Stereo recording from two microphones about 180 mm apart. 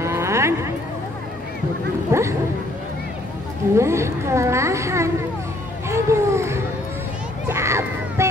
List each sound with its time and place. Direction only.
0.0 s a sound: 15° right (ahead or behind)
2.1 s a woman's voice: 15° right (ahead or behind)
3.7 s a woman's voice: 15° right (ahead or behind)
7.4 s crowd: 15° right (ahead or behind)